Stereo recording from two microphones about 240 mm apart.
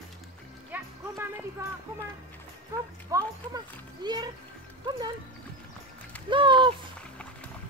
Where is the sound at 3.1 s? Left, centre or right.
Centre.